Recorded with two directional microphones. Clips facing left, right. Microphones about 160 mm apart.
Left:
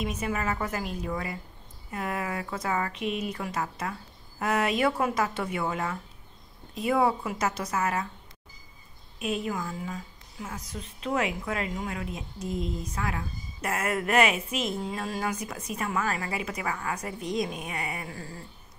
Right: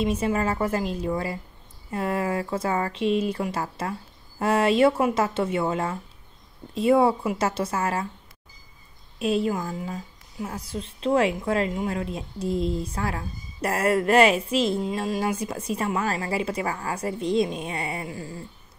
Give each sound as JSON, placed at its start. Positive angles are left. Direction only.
{"t": 0.0, "sound": "speech", "side_deg": -30}
{"t": 9.2, "sound": "speech", "side_deg": -30}